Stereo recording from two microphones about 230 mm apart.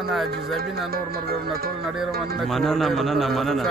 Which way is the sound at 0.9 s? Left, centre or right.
Right.